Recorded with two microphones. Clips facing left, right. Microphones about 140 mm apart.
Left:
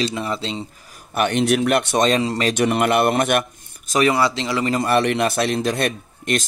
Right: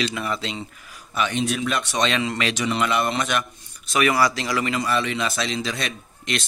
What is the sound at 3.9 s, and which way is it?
Speech, 30° left (ahead or behind).